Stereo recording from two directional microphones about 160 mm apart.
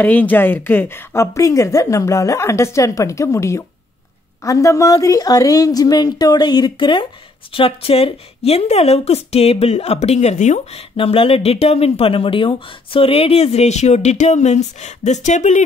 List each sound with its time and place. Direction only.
0.0 s a woman's voice: 10° left (ahead or behind); by 15.6 s 50° left (ahead or behind)